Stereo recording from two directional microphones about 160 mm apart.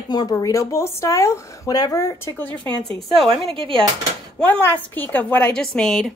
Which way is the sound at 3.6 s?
35° right (ahead or behind).